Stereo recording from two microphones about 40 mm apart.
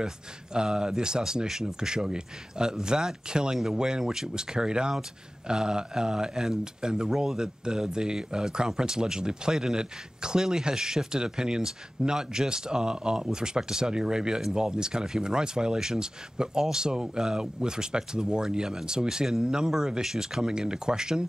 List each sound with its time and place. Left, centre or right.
0.0 s speech: centre